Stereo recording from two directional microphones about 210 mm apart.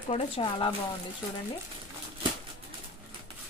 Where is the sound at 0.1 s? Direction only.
20° left (ahead or behind).